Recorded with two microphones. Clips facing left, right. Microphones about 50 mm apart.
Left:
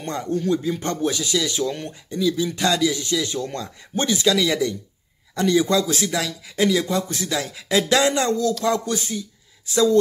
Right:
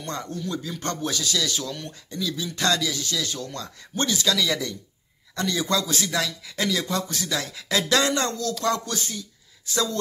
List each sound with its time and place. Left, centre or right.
0.0 s speech: left
0.3 s speech: left
6.1 s speech: centre
6.8 s speech: left